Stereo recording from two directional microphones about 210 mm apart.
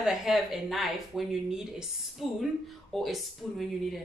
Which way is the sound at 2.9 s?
Centre (ahead or behind).